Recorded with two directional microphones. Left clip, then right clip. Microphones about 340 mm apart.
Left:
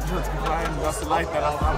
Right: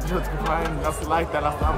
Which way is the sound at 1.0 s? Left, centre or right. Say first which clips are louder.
Even; centre.